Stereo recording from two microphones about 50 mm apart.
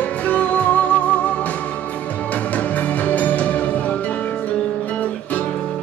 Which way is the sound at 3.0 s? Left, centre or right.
Left.